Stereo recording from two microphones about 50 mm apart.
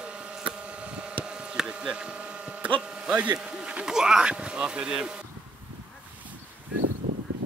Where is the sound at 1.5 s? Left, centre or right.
Centre.